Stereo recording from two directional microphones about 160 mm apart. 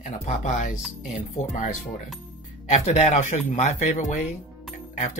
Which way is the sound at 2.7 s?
45° left (ahead or behind).